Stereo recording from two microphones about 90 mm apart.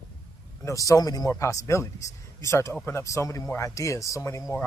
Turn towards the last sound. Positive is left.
turn(degrees=35)  # may be behind; listen again after turning